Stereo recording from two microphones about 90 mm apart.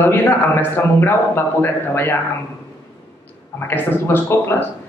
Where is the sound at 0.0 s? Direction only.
20° left (ahead or behind).